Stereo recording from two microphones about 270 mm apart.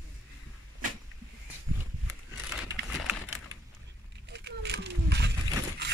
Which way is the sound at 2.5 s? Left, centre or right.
Centre.